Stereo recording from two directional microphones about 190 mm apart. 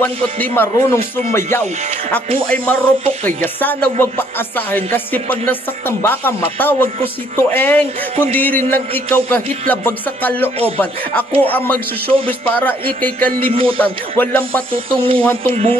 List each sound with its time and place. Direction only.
0.4 s speech: 10° left (ahead or behind)
2.4 s music: 5° left (ahead or behind)
3.3 s speech: 10° left (ahead or behind)
12.4 s speech: 10° left (ahead or behind)
13.5 s speech: 30° right (ahead or behind)
14.1 s speech: 10° left (ahead or behind)
14.7 s speech: 30° right (ahead or behind)